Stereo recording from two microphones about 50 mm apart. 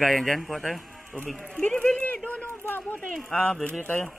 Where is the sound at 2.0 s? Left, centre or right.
Left.